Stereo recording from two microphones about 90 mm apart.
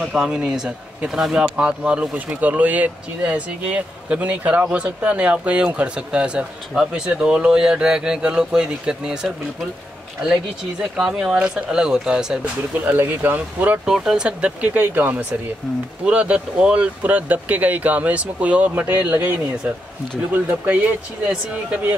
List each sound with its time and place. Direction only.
0.0 s speech: 5° right (ahead or behind)
10.8 s speech: 10° right (ahead or behind)
12.7 s speech: 20° right (ahead or behind)
13.8 s speech: 5° right (ahead or behind)